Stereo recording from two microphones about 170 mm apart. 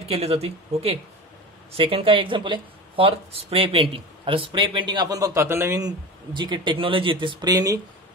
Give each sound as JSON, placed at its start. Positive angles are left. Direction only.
{"t": 0.0, "sound": "speech", "side_deg": -35}